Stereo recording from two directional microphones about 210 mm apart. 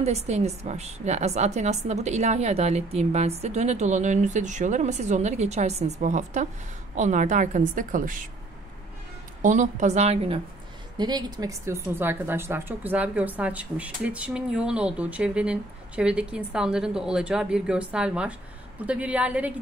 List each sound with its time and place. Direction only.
0.0 s a woman's voice: 30° right (ahead or behind)
9.4 s a woman's voice: 35° right (ahead or behind); by 19.5 s 5° right (ahead or behind)